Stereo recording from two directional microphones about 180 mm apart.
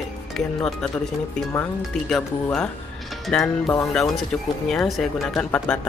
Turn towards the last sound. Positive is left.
turn(degrees=5)  # may be behind; listen again after turning